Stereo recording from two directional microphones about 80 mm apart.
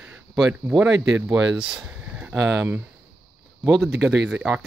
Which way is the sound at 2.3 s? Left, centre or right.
Centre.